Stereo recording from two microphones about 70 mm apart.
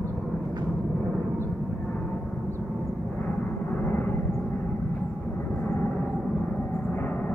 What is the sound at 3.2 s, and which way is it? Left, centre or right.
Vehicle, left.